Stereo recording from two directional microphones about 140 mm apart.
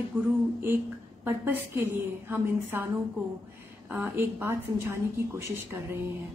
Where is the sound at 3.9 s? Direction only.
15° right (ahead or behind).